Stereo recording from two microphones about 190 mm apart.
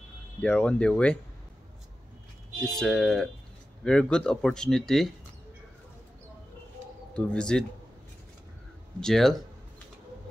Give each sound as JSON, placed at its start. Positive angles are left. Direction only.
{"t": 0.4, "sound": "speech", "side_deg": 5}
{"t": 2.6, "sound": "speech", "side_deg": 0}
{"t": 7.2, "sound": "speech", "side_deg": 5}
{"t": 9.0, "sound": "speech", "side_deg": 0}